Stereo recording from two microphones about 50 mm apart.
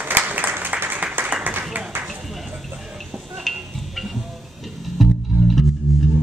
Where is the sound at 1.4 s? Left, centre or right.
Right.